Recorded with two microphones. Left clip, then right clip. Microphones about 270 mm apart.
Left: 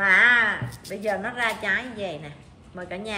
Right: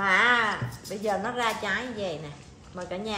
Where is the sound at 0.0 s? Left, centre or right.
Right.